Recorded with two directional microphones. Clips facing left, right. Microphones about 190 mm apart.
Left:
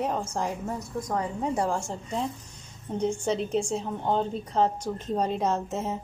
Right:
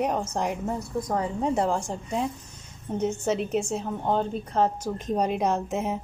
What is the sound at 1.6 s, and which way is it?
Speech, 20° right (ahead or behind).